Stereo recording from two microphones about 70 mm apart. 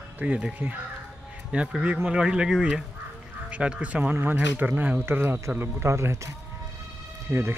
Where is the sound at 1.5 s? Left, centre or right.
Centre.